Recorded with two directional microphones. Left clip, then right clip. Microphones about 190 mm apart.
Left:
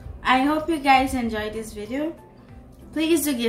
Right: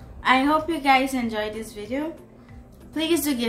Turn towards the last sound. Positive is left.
turn(degrees=-5)  # may be behind; listen again after turning